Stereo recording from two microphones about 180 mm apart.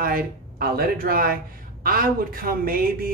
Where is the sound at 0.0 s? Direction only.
55° right (ahead or behind).